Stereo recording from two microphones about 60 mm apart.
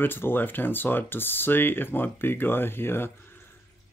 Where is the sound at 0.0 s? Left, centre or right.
Left.